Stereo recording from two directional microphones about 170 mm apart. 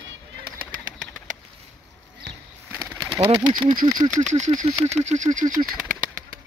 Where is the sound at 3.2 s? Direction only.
25° right (ahead or behind).